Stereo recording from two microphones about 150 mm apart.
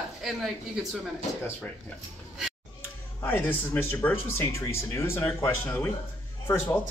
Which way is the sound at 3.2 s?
15° left (ahead or behind).